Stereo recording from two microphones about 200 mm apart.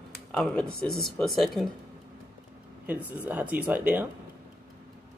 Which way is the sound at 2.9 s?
10° right (ahead or behind).